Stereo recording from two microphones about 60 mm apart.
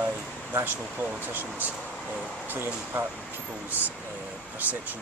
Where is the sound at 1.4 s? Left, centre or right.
Right.